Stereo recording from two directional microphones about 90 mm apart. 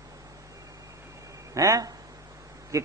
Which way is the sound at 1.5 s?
40° right (ahead or behind).